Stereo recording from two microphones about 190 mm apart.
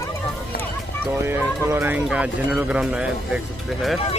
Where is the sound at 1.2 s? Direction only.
15° right (ahead or behind).